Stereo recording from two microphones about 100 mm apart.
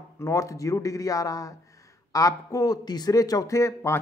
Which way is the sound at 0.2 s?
35° left (ahead or behind).